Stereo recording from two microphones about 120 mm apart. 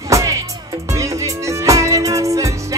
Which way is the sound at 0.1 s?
30° right (ahead or behind).